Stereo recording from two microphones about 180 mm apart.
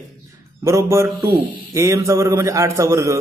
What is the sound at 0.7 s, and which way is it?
A man's voice, 15° right (ahead or behind).